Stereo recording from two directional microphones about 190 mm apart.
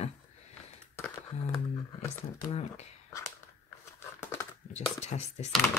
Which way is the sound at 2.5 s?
35° left (ahead or behind).